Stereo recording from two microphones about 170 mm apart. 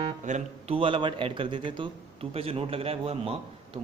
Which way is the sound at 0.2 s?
45° right (ahead or behind).